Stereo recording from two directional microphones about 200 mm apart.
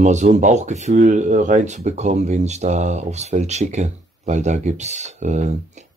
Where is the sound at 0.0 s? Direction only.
35° right (ahead or behind).